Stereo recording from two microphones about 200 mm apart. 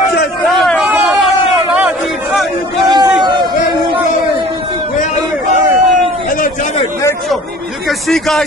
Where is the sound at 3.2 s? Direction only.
20° right (ahead or behind).